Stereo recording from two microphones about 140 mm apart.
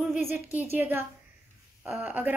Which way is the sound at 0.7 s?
15° right (ahead or behind).